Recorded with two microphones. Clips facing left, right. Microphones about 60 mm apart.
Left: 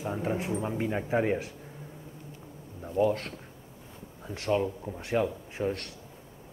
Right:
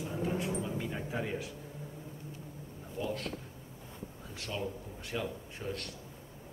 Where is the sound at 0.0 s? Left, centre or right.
Left.